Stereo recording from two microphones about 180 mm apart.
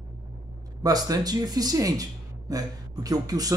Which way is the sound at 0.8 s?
20° right (ahead or behind).